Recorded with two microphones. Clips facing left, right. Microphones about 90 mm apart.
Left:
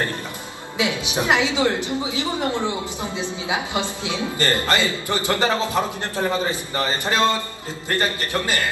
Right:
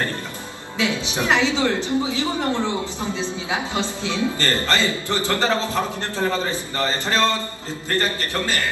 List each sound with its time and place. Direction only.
0.7 s a woman's voice: 15° left (ahead or behind)